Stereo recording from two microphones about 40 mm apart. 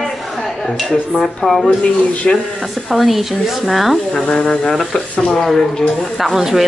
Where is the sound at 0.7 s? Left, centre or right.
Centre.